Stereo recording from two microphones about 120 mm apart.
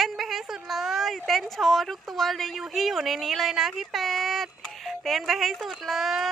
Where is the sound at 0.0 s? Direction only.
Centre (ahead or behind).